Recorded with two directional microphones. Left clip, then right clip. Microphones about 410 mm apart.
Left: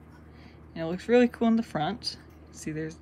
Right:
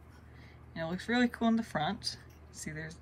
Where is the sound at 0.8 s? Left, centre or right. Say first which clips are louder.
Left 9 dB; centre.